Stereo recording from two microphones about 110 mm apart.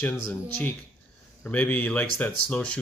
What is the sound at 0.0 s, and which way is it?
Speech, 15° left (ahead or behind).